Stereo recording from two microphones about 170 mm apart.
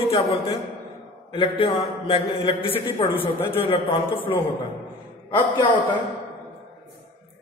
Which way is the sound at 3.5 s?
30° left (ahead or behind).